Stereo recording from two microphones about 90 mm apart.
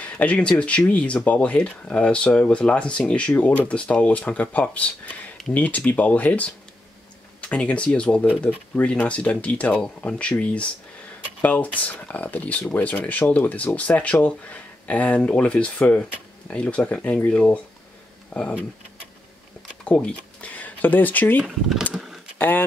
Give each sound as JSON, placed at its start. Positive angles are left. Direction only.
{"t": 0.0, "sound": "speech", "side_deg": 15}
{"t": 19.8, "sound": "speech", "side_deg": 10}
{"t": 21.9, "sound": "typing", "side_deg": -5}
{"t": 22.4, "sound": "speech", "side_deg": 20}